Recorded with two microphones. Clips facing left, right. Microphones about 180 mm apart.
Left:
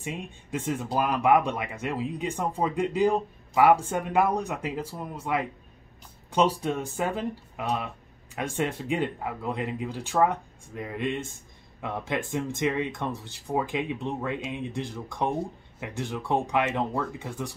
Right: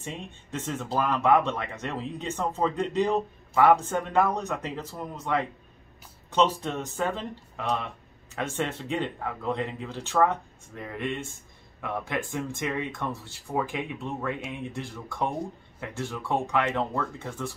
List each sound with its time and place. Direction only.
0.0 s speech: 10° left (ahead or behind)